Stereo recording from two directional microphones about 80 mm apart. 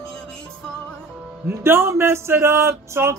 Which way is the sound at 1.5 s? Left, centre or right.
Right.